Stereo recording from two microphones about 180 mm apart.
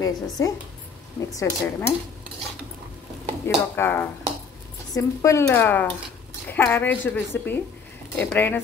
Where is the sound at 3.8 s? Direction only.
10° left (ahead or behind).